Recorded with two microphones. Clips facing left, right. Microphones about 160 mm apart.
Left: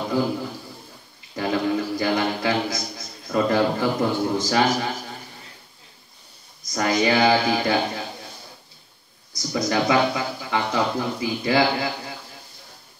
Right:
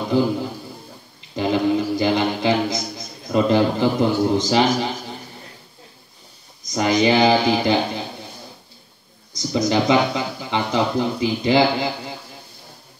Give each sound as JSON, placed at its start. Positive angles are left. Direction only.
{"t": 1.3, "sound": "speech", "side_deg": -20}
{"t": 6.7, "sound": "speech", "side_deg": -20}
{"t": 9.5, "sound": "speech", "side_deg": -20}